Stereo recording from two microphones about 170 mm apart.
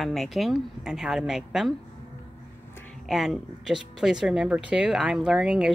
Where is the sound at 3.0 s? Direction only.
Centre (ahead or behind).